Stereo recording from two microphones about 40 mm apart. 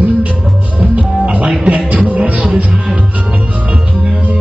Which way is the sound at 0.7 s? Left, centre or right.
Right.